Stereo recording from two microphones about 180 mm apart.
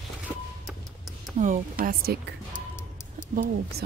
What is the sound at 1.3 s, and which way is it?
Speech, 45° right (ahead or behind).